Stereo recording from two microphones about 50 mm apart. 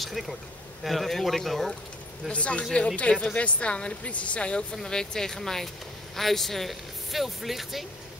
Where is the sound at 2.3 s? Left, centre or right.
Left.